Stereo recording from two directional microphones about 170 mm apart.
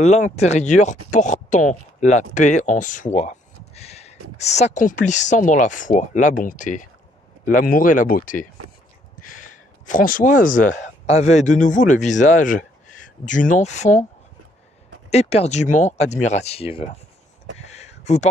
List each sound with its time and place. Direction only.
0.0 s speech: 40° left (ahead or behind)
15.0 s speech: 40° left (ahead or behind)
17.6 s a sound: 40° left (ahead or behind)